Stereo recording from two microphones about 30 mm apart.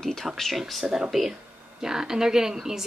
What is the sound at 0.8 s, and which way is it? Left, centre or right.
Speech, right.